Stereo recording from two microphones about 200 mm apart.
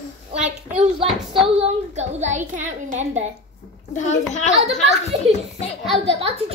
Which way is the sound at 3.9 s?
35° left (ahead or behind).